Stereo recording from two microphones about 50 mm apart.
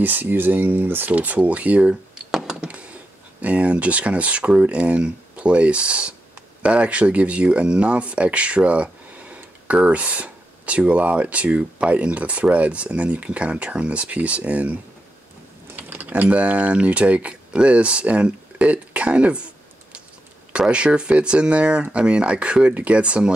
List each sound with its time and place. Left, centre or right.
0.0 s speech: right
1.1 s speech: right
2.3 s a sound: centre
3.3 s speech: right
20.7 s speech: centre